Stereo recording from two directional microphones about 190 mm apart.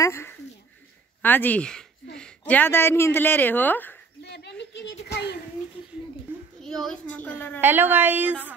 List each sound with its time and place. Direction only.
0.0 s a sound: 15° left (ahead or behind)
1.2 s speech: 10° left (ahead or behind)
4.2 s a sound: 65° left (ahead or behind)
5.0 s a child's voice: 60° left (ahead or behind)
6.6 s speech: centre (ahead or behind)
7.6 s a woman's voice: 10° right (ahead or behind)